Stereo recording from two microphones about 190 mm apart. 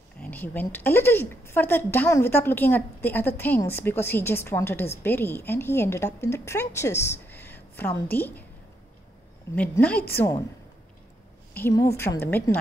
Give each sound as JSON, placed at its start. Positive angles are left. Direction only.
{"t": 0.3, "sound": "a woman's voice", "side_deg": 10}
{"t": 9.6, "sound": "a woman's voice", "side_deg": 5}
{"t": 11.5, "sound": "a woman's voice", "side_deg": 15}